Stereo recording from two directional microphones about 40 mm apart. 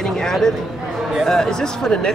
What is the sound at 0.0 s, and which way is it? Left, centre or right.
Speech, centre.